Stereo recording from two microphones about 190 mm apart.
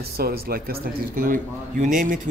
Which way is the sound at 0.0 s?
55° right (ahead or behind).